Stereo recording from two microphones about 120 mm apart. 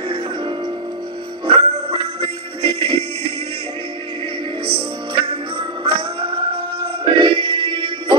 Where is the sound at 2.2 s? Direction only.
50° right (ahead or behind).